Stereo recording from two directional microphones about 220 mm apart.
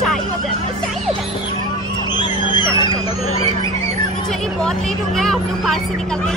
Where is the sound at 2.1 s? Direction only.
20° left (ahead or behind).